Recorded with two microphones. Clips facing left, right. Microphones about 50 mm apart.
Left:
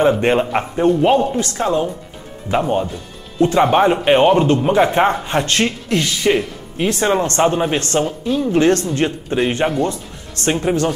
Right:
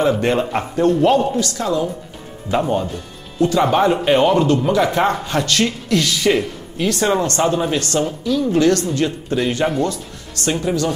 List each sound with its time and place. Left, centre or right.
0.2 s speech: left
1.5 s speech: left
3.3 s speech: left